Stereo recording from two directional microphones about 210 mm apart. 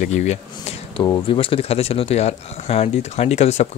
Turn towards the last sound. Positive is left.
turn(degrees=30)  # may be behind; listen again after turning